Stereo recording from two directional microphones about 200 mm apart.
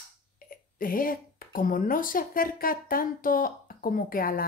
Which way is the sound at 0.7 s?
45° left (ahead or behind).